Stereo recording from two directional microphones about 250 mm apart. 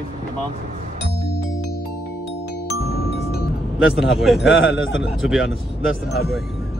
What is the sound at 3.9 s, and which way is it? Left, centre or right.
Speech, centre.